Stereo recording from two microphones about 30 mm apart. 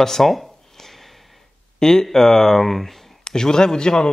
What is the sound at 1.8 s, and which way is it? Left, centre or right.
Speech, centre.